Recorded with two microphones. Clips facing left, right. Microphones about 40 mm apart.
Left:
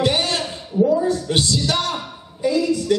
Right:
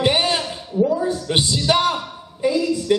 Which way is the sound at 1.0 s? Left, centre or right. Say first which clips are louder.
Left 1 dB; centre.